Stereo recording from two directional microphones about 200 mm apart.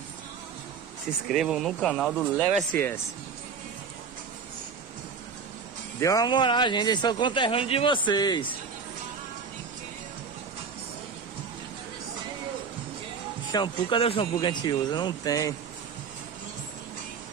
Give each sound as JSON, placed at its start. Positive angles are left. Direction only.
{"t": 1.3, "sound": "speech", "side_deg": 0}
{"t": 2.7, "sound": "speech", "side_deg": 10}
{"t": 5.9, "sound": "speech", "side_deg": 15}
{"t": 13.5, "sound": "speech", "side_deg": 20}